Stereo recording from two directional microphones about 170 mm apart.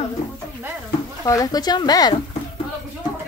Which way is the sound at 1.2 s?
20° left (ahead or behind).